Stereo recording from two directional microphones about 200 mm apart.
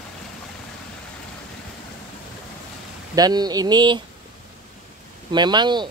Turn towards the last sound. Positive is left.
turn(degrees=-20)  # may be behind; listen again after turning